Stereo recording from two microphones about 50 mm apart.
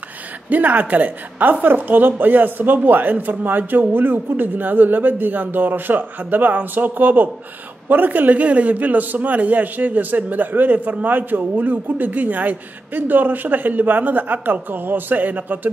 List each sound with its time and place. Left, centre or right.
0.5 s a man's voice: right